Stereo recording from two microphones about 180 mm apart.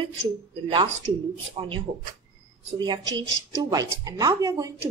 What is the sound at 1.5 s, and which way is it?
Speech, 30° right (ahead or behind).